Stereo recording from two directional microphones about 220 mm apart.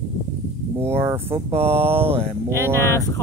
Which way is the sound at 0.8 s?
10° right (ahead or behind).